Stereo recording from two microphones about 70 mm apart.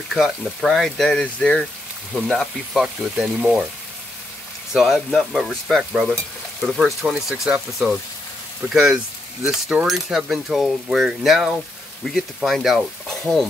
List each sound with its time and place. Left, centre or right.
0.1 s speech: centre
1.2 s speech: centre
2.1 s speech: centre
4.7 s speech: centre